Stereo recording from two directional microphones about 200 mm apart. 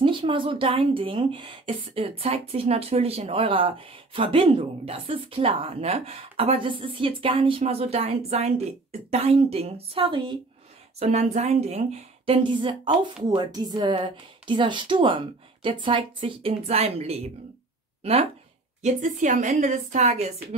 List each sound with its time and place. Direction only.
0.0 s speech: 25° right (ahead or behind)
18.8 s a woman's voice: 35° right (ahead or behind)